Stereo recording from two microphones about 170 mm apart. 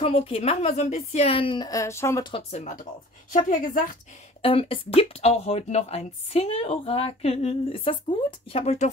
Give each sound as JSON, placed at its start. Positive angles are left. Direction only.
{"t": 0.0, "sound": "speech", "side_deg": 35}
{"t": 2.3, "sound": "a woman's voice", "side_deg": 40}
{"t": 4.4, "sound": "speech", "side_deg": 35}